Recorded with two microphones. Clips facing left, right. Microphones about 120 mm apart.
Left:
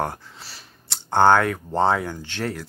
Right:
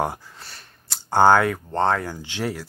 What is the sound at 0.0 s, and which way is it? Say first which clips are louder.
Speech: right 2 dB; 10° right (ahead or behind).